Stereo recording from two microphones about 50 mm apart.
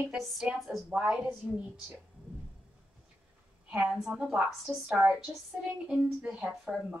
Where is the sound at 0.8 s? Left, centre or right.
Right.